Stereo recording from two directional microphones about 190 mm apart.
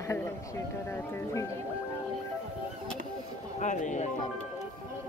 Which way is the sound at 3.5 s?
40° left (ahead or behind).